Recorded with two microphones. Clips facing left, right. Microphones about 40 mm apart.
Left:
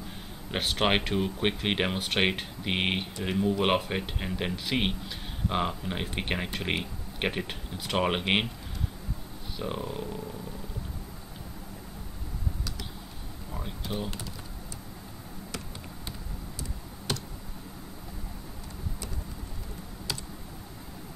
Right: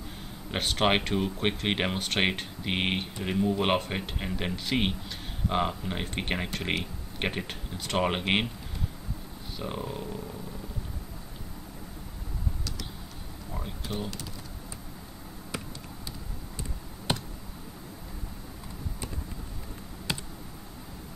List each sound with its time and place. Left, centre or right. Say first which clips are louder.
0.5 s speech: right 1 dB; centre
9.6 s speech: left 1 dB; centre
13.6 s computer keyboard: left 1 dB; centre
17.1 s a sound: right 3 dB; right